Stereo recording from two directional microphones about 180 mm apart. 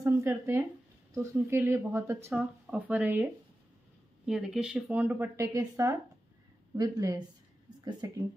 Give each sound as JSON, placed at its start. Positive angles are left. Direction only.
{"t": 0.0, "sound": "speech", "side_deg": -15}
{"t": 4.3, "sound": "speech", "side_deg": 0}